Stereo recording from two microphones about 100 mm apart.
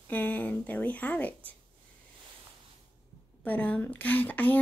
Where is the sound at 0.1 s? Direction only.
15° left (ahead or behind).